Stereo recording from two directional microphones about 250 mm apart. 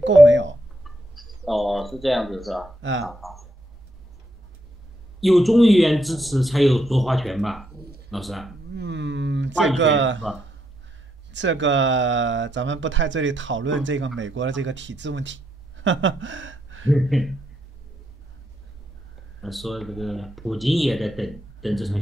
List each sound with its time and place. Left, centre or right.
0.0 s speech: right
0.8 s speech: centre
5.2 s speech: centre
8.7 s speech: right
11.3 s speech: right
16.9 s speech: centre
19.4 s speech: centre